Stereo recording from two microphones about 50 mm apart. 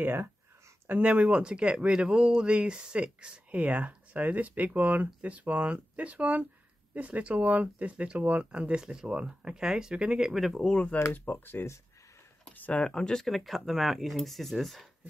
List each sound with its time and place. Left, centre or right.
0.0 s speech: right
1.1 s speech: right; by 10.4 s centre
10.4 s speech: centre
10.7 s speech: left
11.1 s speech: left
12.7 s speech: centre
13.3 s speech: centre